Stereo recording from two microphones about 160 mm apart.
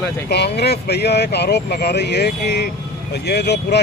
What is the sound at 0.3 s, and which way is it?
Speech, 90° left.